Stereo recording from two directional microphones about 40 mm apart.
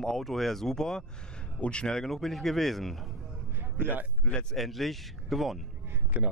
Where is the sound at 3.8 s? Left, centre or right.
Right.